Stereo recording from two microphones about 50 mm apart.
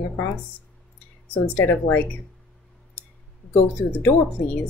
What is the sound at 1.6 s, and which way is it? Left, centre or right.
Speech, left.